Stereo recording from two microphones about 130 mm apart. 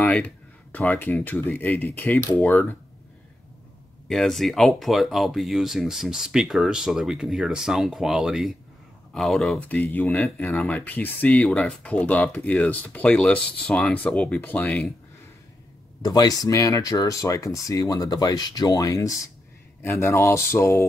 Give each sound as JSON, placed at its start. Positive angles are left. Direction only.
{"t": 0.1, "sound": "speech", "side_deg": 10}
{"t": 4.1, "sound": "speech", "side_deg": 5}
{"t": 16.0, "sound": "speech", "side_deg": 30}